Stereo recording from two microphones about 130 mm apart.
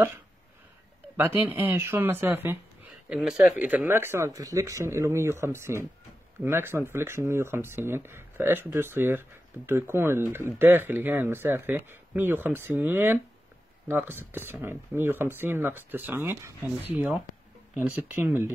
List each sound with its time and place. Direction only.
1.1 s speech: 15° right (ahead or behind)
3.1 s speech: 5° right (ahead or behind)